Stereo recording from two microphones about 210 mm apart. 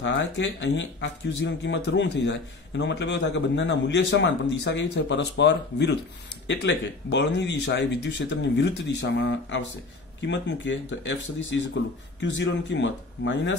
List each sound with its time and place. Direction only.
0.0 s speech: 60° left (ahead or behind)